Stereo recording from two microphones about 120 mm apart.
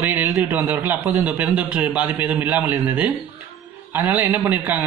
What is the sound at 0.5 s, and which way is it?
A man's voice, 15° right (ahead or behind).